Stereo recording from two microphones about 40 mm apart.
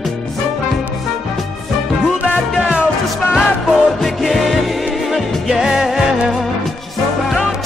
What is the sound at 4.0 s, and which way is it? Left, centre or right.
Music, centre.